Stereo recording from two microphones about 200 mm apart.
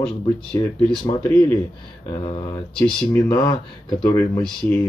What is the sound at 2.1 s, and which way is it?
Speech, 25° left (ahead or behind).